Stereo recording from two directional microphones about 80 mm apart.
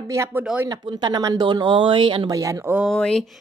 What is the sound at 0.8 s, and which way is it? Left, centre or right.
Speech, right.